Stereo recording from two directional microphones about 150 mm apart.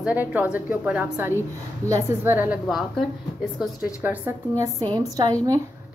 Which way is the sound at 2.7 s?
Centre (ahead or behind).